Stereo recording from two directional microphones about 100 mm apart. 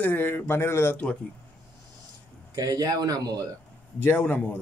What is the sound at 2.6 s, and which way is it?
Speech, 35° right (ahead or behind).